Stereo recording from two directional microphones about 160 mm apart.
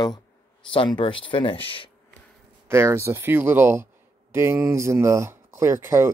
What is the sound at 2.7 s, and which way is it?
Speech, 15° right (ahead or behind).